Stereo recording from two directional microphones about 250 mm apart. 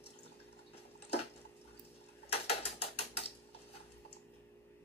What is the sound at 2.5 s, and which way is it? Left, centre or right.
Mechanisms, left.